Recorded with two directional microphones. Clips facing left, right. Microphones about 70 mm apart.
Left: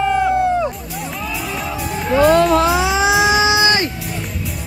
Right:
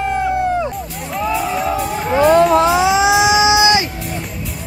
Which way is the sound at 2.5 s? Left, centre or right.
Right.